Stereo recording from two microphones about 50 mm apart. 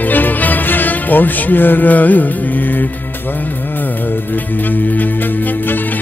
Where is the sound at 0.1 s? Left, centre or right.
Left.